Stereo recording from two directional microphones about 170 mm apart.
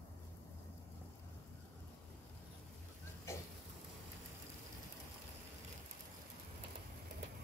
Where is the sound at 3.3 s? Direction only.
15° left (ahead or behind).